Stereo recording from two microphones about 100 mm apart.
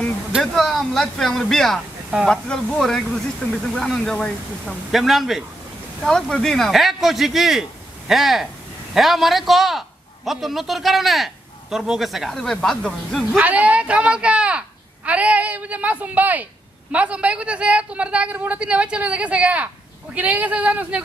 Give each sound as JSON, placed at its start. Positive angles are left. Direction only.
{"t": 0.3, "sound": "a man's voice", "side_deg": 0}
{"t": 13.4, "sound": "a woman's voice", "side_deg": -15}